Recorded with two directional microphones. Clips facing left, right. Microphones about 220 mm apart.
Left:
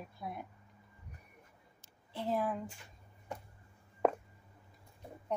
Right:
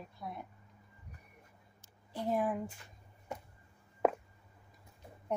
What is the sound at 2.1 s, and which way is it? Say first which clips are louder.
Speech: right 2 dB; 15° right (ahead or behind).